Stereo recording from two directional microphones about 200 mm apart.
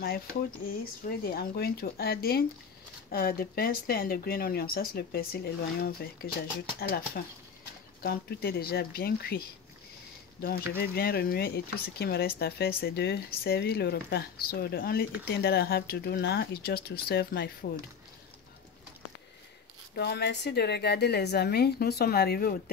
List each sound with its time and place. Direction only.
0.7 s speech: 50° left (ahead or behind)
10.8 s speech: 50° left (ahead or behind)
20.0 s a woman's voice: 55° left (ahead or behind)